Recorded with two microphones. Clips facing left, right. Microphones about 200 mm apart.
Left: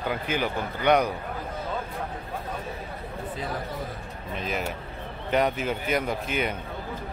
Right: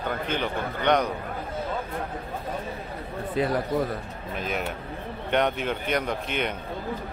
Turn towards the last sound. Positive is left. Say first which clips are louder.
# even
turn(degrees=5)  # may be behind; listen again after turning